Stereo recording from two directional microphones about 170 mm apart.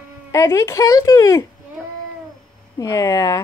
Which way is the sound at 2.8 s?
20° left (ahead or behind).